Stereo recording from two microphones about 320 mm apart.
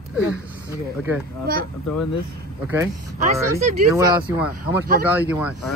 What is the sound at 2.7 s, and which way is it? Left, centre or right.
A woman's voice, centre.